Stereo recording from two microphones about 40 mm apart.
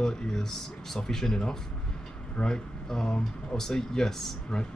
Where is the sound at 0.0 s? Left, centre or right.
Centre.